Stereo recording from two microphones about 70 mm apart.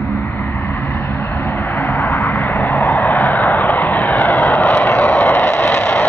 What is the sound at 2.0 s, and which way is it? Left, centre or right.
Vehicle, left.